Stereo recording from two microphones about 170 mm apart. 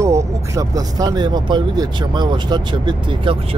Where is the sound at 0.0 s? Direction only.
20° right (ahead or behind).